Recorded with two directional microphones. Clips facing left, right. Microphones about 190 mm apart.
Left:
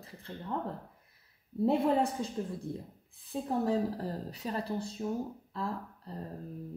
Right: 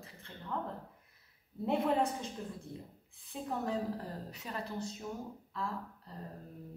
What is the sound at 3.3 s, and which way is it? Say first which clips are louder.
Speech: left 6 dB; 35° left (ahead or behind).